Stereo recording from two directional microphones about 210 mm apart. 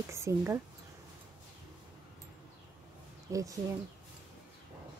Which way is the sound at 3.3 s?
15° right (ahead or behind).